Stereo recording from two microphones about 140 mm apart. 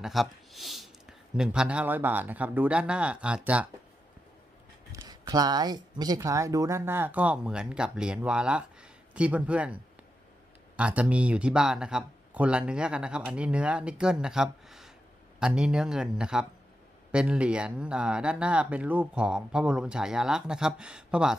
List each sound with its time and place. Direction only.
0.0 s speech: centre (ahead or behind)
4.9 s speech: 25° right (ahead or behind); by 9.8 s 10° right (ahead or behind)
10.8 s speech: 10° right (ahead or behind)